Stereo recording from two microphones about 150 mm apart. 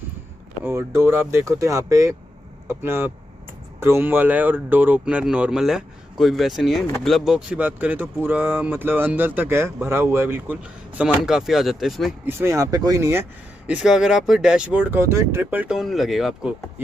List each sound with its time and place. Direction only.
0.7 s speech: 15° right (ahead or behind)
12.3 s speech: 15° right (ahead or behind)
13.7 s speech: 5° right (ahead or behind)